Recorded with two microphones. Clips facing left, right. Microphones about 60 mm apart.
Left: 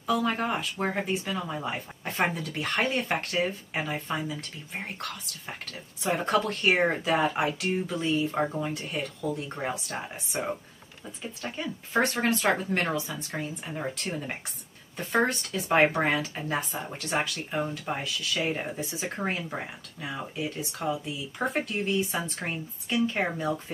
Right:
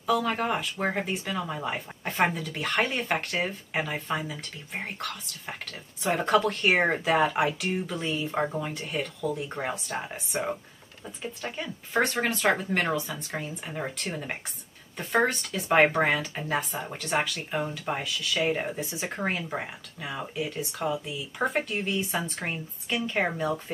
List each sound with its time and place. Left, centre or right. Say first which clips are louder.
0.0 s speech: right 1 dB; centre
8.3 s speech: even; centre
11.6 s speech: even; centre
22.4 s speech: even; centre